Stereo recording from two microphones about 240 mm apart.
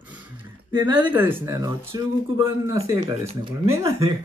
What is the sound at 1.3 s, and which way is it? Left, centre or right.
Speech, centre.